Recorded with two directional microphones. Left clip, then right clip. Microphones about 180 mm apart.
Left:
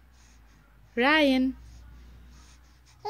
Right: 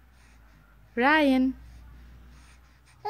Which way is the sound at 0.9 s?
5° right (ahead or behind).